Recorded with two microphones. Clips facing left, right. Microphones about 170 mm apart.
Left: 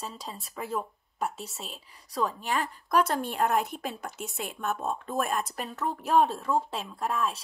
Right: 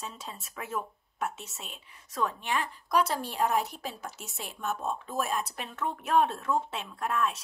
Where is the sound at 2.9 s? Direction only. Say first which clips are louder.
Left 2 dB; 50° left (ahead or behind).